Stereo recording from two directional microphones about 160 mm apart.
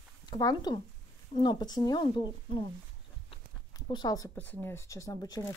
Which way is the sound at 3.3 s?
30° left (ahead or behind).